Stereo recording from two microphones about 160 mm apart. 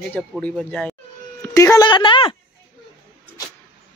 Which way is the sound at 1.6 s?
20° left (ahead or behind).